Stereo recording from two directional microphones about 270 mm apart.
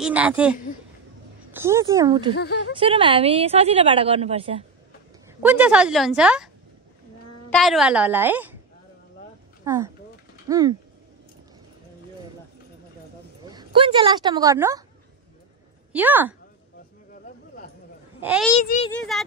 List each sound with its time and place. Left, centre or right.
0.0 s a woman's voice: centre
2.3 s speech: left
2.7 s a woman's voice: centre
5.4 s a woman's voice: centre
9.6 s speech: centre
13.5 s speech: centre
15.9 s speech: centre
18.2 s speech: centre
18.7 s speech: left
19.1 s a woman's voice: centre